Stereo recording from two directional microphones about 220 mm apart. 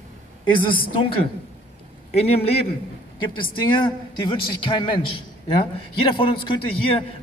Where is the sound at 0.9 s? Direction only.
25° left (ahead or behind).